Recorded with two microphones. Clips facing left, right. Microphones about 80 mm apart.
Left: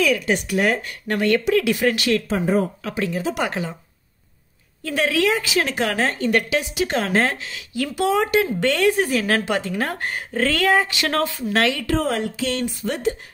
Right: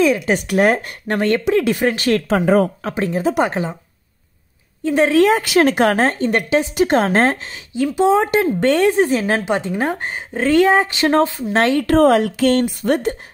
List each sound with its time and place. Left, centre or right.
0.0 s speech: right
0.3 s speech: right
1.0 s a woman's voice: right
2.2 s speech: right
2.8 s a woman's voice: right
3.4 s speech: right
4.8 s speech: right
5.2 s a woman's voice: right
7.7 s speech: right
8.3 s speech: right
11.6 s a woman's voice: right
11.9 s speech: right